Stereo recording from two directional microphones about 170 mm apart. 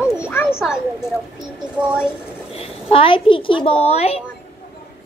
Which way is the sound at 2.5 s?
35° left (ahead or behind).